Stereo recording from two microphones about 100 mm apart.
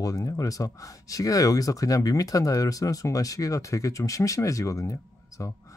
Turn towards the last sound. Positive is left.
turn(degrees=35)  # may be behind; listen again after turning